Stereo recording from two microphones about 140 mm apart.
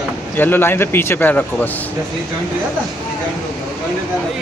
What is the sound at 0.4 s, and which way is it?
A man's voice, 15° left (ahead or behind).